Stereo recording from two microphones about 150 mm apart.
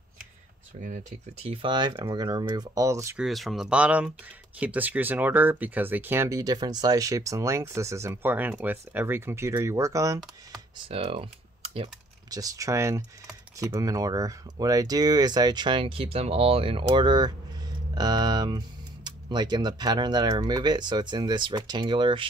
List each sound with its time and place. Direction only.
1.4 s speech: 40° right (ahead or behind); by 3.2 s 20° right (ahead or behind)
3.2 s speech: centre (ahead or behind); by 10.6 s 20° right (ahead or behind)
10.9 s speech: 40° right (ahead or behind)
12.3 s speech: 25° right (ahead or behind)